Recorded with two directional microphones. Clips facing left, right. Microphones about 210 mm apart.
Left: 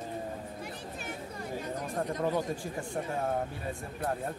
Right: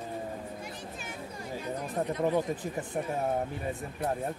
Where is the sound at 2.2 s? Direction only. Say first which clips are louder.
Right 4 dB; 20° right (ahead or behind).